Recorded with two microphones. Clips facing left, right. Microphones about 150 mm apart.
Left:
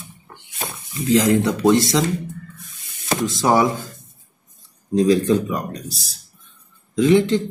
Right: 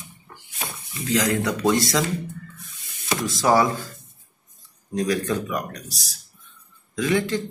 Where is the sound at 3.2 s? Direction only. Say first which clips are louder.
Left 2 dB; 20° left (ahead or behind).